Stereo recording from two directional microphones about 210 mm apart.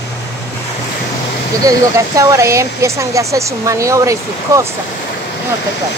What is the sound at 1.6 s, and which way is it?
Speech, 15° right (ahead or behind).